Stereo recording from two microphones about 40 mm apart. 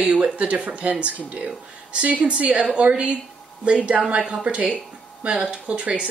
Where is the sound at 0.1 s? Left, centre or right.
Right.